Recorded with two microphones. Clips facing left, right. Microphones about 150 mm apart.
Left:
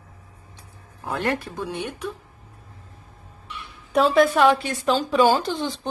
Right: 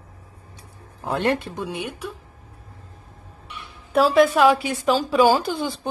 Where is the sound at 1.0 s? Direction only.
25° right (ahead or behind).